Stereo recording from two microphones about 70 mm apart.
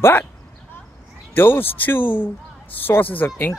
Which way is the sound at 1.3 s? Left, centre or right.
Left.